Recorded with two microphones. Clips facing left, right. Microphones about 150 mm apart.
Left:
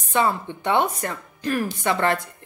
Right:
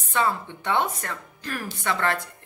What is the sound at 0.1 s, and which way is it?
A woman's voice, 20° left (ahead or behind).